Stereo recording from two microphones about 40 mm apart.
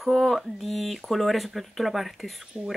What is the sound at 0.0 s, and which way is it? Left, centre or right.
Speech, centre.